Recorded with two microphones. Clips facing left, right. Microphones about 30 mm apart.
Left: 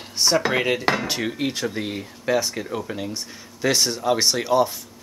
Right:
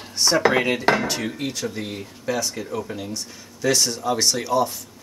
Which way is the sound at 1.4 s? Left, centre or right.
Left.